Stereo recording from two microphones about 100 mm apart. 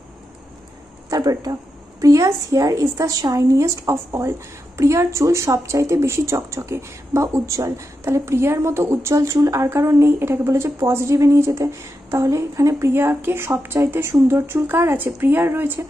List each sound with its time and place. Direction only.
1.1 s a woman's voice: 40° right (ahead or behind); by 15.8 s 20° right (ahead or behind)